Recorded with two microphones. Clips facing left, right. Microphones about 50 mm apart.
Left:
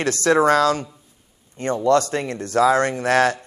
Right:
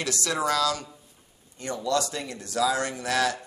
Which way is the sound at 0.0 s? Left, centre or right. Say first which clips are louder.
Left 11 dB; left.